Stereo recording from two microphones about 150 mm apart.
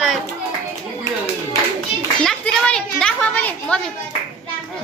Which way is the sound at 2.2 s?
5° left (ahead or behind).